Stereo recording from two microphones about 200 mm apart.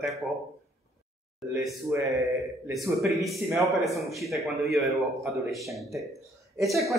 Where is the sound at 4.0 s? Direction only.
Centre (ahead or behind).